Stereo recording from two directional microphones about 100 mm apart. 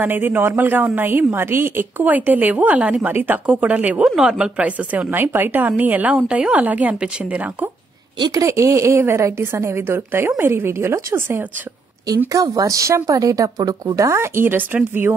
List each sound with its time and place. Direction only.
0.0 s a woman's voice: 20° right (ahead or behind)
8.2 s a woman's voice: 35° right (ahead or behind)
12.3 s a woman's voice: 35° right (ahead or behind); by 15.1 s 20° right (ahead or behind)